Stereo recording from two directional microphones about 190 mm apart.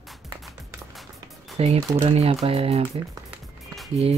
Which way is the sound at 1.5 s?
35° right (ahead or behind).